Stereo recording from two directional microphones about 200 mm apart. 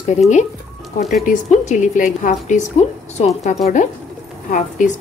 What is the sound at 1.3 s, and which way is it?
A woman's voice, 40° left (ahead or behind).